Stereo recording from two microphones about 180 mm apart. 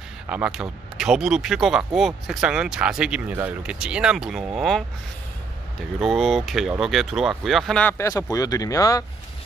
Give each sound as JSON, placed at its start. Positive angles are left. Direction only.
{"t": 0.3, "sound": "speech", "side_deg": -5}
{"t": 5.9, "sound": "speech", "side_deg": 0}
{"t": 8.0, "sound": "speech", "side_deg": 20}